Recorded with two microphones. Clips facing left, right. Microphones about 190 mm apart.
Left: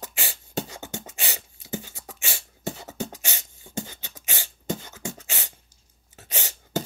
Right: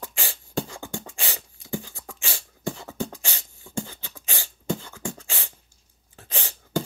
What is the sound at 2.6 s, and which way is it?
Beatboxing, 20° left (ahead or behind).